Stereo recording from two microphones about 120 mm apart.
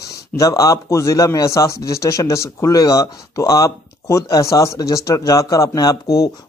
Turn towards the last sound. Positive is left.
turn(degrees=30)  # may be behind; listen again after turning